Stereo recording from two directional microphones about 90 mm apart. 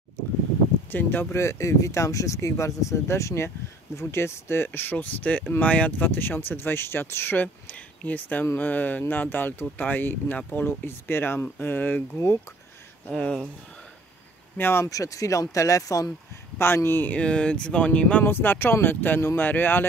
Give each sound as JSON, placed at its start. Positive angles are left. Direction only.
{"t": 0.9, "sound": "speech", "side_deg": 25}
{"t": 13.0, "sound": "speech", "side_deg": 15}
{"t": 14.6, "sound": "speech", "side_deg": 25}
{"t": 14.9, "sound": "speech", "side_deg": 40}
{"t": 16.5, "sound": "speech", "side_deg": 25}